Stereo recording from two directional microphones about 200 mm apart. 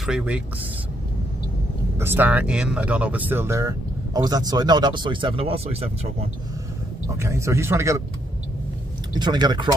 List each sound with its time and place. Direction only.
0.0 s speech: 5° right (ahead or behind)
2.0 s speech: 10° right (ahead or behind); by 6.1 s 30° right (ahead or behind)
7.2 s speech: 15° right (ahead or behind)
9.1 s speech: 20° right (ahead or behind)